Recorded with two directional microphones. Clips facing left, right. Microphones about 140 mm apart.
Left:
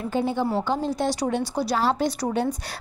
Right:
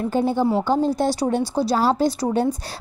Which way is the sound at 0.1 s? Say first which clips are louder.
Right 3 dB; 40° right (ahead or behind).